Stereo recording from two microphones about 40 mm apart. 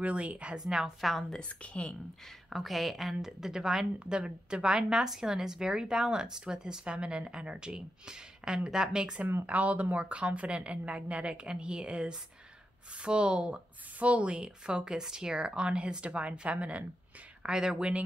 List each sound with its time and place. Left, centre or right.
0.0 s a woman's voice: right
0.7 s a woman's voice: centre
1.0 s a woman's voice: centre
1.4 s a woman's voice: left
2.5 s a woman's voice: centre
9.5 s a woman's voice: right
17.4 s speech: right